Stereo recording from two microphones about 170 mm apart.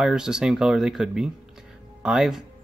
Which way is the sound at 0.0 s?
5° right (ahead or behind).